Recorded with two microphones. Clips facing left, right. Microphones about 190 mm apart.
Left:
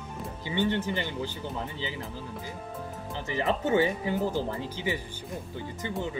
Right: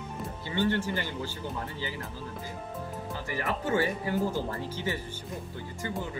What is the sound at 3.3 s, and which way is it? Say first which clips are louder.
Speech: left 4 dB; 20° left (ahead or behind).